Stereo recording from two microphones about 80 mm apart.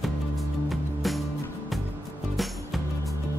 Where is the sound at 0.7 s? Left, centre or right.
Centre.